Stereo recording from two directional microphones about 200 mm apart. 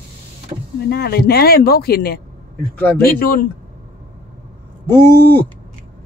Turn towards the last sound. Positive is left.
turn(degrees=10)  # may be behind; listen again after turning